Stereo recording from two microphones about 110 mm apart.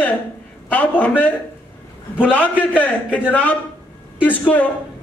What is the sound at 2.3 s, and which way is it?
A man's voice, 15° left (ahead or behind).